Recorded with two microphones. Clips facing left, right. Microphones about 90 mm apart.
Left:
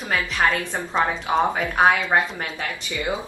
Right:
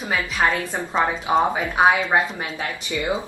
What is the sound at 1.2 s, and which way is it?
Speech, 5° right (ahead or behind).